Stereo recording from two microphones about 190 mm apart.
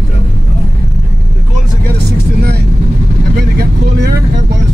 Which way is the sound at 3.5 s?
55° right (ahead or behind).